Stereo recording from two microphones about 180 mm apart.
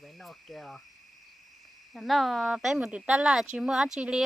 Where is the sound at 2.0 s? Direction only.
Centre (ahead or behind).